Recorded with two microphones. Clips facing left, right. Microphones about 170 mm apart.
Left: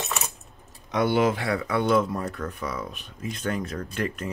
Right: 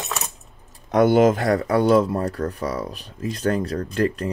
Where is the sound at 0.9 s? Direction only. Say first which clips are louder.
Right 7 dB; 45° right (ahead or behind).